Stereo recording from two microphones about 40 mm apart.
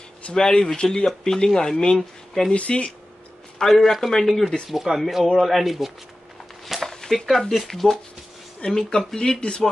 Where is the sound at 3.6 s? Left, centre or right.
Centre.